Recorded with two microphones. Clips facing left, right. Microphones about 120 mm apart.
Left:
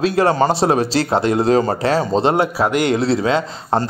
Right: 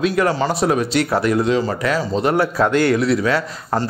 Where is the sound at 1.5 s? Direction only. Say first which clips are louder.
Left 3 dB; 40° left (ahead or behind); by 2.9 s 15° left (ahead or behind).